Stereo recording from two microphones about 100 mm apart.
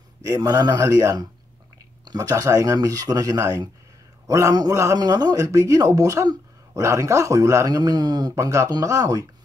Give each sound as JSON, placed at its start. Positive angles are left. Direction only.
{"t": 0.2, "sound": "speech", "side_deg": -35}